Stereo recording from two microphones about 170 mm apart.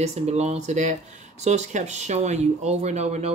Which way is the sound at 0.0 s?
40° right (ahead or behind).